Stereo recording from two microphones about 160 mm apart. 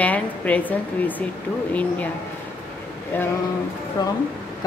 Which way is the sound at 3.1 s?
10° left (ahead or behind).